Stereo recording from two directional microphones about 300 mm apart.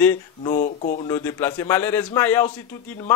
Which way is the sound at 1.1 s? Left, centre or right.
Centre.